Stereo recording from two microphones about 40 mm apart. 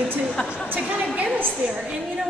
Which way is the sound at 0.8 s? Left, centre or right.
Right.